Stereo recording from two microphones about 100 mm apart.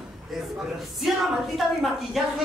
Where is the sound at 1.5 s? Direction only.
Centre (ahead or behind).